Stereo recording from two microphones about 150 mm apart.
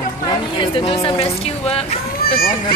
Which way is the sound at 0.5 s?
35° left (ahead or behind).